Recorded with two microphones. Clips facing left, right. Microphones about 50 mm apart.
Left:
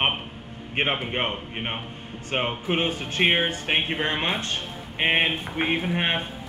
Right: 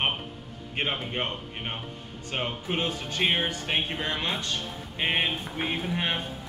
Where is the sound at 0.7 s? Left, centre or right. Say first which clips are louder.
Left 4 dB; left.